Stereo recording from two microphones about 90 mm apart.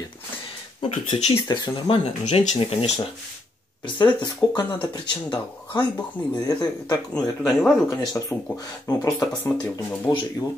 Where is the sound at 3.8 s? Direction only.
55° left (ahead or behind).